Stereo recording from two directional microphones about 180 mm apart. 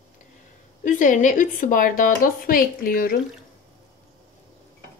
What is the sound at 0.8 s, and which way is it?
A woman's voice, 45° left (ahead or behind).